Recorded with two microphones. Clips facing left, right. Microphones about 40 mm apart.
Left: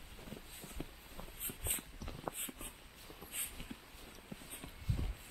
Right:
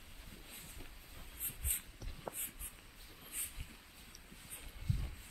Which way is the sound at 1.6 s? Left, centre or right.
Left.